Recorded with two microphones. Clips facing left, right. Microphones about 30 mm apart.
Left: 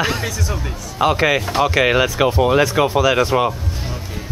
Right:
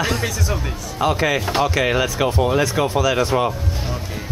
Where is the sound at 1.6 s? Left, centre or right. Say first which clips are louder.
Left 3 dB; centre.